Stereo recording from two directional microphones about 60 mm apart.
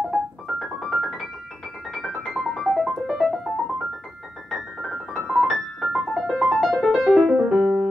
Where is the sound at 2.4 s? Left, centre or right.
Centre.